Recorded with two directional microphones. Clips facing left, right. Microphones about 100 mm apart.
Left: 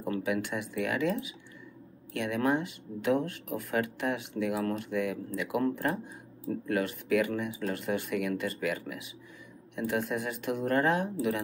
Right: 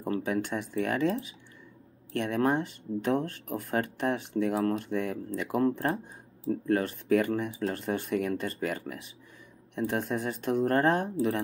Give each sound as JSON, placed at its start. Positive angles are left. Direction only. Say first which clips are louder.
{"t": 0.1, "sound": "speech", "louder": "right 1 dB", "side_deg": -35}